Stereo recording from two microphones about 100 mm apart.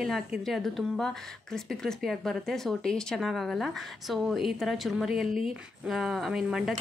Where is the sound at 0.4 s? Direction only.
Centre (ahead or behind).